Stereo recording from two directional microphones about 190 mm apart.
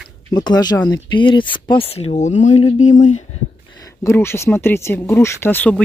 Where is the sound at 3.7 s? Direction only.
15° left (ahead or behind).